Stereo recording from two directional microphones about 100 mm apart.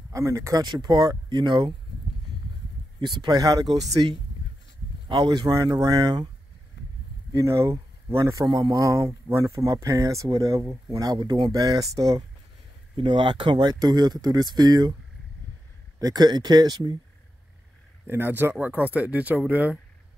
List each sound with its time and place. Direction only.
0.1 s speech: 30° right (ahead or behind)
0.7 s speech: 45° right (ahead or behind)
3.2 s speech: 40° right (ahead or behind)
5.0 s speech: 50° right (ahead or behind)
7.3 s speech: 30° right (ahead or behind)
12.9 s speech: 55° right (ahead or behind)
16.0 s speech: 45° right (ahead or behind)
18.0 s speech: 20° right (ahead or behind)